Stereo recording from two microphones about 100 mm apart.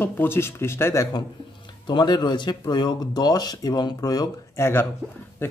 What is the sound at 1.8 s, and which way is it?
Speech, 45° left (ahead or behind).